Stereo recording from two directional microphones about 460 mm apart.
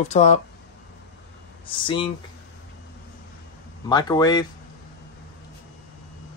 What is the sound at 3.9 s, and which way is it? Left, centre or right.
Speech, centre.